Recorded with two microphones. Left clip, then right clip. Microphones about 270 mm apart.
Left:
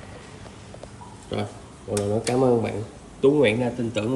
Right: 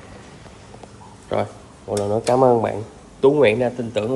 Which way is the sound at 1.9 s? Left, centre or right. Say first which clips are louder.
Right 5 dB; centre.